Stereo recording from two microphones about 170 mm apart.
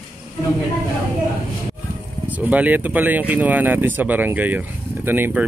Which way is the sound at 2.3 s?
10° right (ahead or behind).